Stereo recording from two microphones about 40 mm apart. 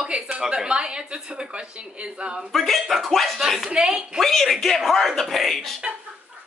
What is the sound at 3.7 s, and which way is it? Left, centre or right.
Speech, right.